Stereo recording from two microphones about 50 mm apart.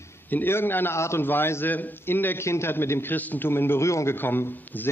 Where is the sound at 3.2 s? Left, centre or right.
Left.